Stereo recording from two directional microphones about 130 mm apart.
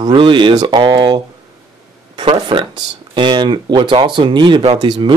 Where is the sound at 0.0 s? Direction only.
40° right (ahead or behind).